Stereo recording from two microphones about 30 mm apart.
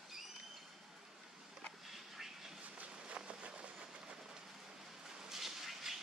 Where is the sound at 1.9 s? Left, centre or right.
Centre.